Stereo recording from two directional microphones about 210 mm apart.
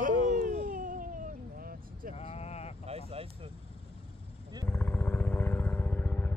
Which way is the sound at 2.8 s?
30° right (ahead or behind).